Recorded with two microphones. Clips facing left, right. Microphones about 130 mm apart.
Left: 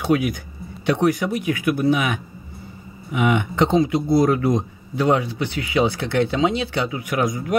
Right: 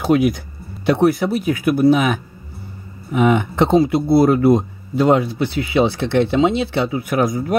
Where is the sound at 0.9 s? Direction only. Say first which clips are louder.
Right 4 dB; 35° right (ahead or behind).